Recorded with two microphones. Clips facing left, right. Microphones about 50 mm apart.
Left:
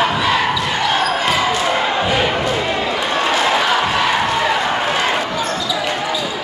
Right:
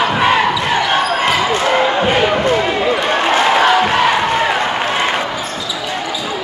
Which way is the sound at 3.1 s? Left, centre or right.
Right.